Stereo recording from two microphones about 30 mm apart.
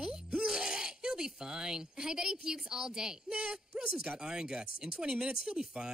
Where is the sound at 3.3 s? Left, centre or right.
Right.